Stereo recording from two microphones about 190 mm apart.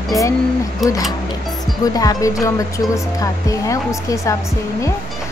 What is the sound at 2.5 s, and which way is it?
Speech, 15° left (ahead or behind).